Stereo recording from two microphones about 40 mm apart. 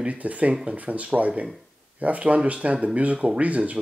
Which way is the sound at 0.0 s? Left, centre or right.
Right.